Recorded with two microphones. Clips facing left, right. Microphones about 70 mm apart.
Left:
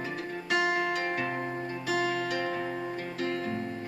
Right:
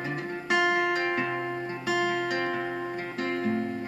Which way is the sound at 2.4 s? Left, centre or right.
Right.